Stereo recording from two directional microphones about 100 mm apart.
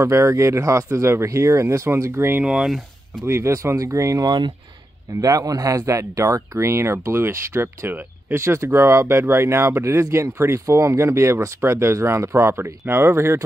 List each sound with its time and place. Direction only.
0.0 s speech: 30° right (ahead or behind)
2.4 s speech: 10° right (ahead or behind)
3.3 s speech: 25° right (ahead or behind)